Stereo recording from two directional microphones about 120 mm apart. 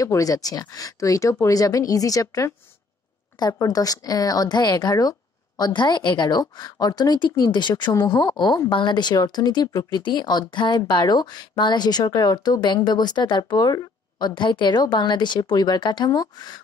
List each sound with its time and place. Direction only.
0.0 s a woman's voice: 30° left (ahead or behind)